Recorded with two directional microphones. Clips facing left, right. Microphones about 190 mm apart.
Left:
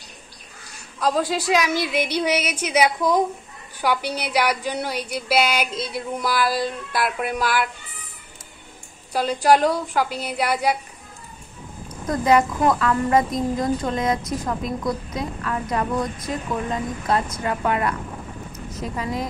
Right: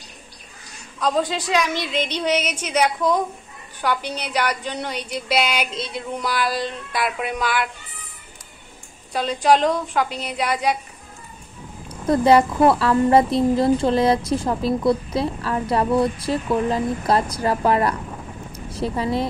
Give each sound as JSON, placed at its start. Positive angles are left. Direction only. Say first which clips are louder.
{"t": 0.9, "sound": "a woman's voice", "louder": "even", "side_deg": 5}
{"t": 9.1, "sound": "a woman's voice", "louder": "even", "side_deg": 5}
{"t": 12.1, "sound": "speech", "louder": "right 3 dB", "side_deg": -30}